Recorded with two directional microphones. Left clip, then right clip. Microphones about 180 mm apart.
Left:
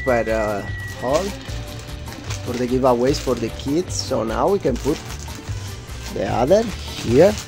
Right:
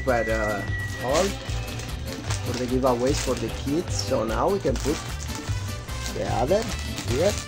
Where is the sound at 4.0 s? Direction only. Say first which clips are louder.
Left 2 dB; 45° left (ahead or behind).